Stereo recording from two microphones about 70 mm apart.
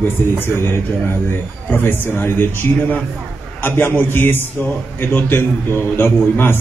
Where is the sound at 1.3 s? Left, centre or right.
Left.